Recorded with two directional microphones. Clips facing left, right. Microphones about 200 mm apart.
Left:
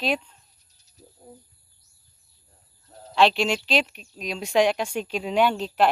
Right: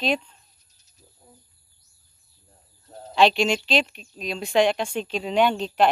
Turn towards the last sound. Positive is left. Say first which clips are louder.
# right 1 dB
turn(degrees=5)  # may be behind; listen again after turning